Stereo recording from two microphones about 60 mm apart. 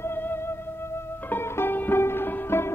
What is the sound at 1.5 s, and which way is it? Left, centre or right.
Music, left.